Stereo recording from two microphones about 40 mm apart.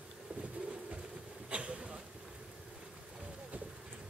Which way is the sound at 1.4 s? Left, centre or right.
Right.